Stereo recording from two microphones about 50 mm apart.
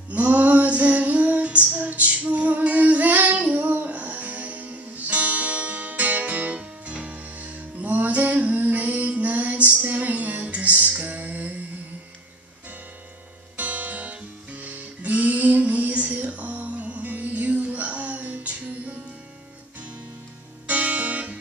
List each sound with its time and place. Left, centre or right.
0.1 s female singing: right
3.9 s music: right
13.6 s music: right
20.6 s music: right